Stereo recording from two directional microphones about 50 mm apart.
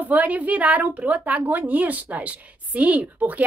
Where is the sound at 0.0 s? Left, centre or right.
Right.